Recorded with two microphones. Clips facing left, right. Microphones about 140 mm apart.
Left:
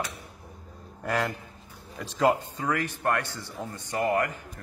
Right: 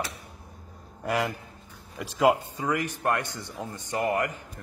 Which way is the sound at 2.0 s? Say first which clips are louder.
Right 2 dB; 10° right (ahead or behind).